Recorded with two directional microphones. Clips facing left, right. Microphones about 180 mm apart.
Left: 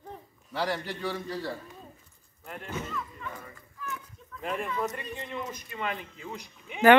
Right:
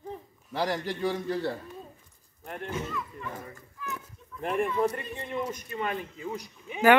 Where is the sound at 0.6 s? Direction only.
15° right (ahead or behind).